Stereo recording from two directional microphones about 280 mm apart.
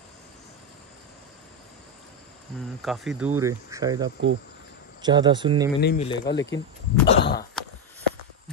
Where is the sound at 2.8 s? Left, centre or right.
Centre.